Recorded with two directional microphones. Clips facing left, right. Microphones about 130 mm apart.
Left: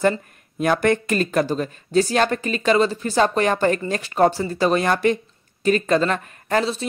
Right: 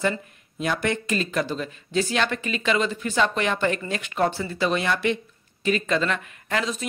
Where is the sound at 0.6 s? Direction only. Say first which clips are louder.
Left 7 dB; 50° left (ahead or behind).